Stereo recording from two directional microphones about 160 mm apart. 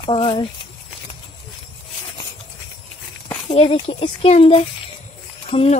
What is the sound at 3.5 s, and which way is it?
Speech, 40° left (ahead or behind).